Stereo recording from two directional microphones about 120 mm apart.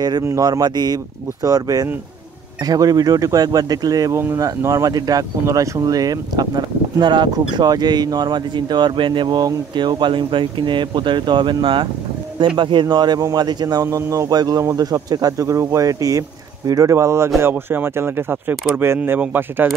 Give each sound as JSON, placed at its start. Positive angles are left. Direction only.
{"t": 0.2, "sound": "speech", "side_deg": -30}